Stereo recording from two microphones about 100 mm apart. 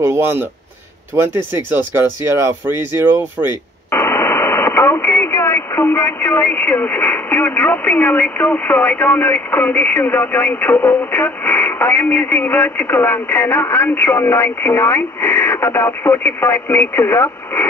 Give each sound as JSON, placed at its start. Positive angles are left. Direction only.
{"t": 0.0, "sound": "speech", "side_deg": -25}
{"t": 3.9, "sound": "speech", "side_deg": 25}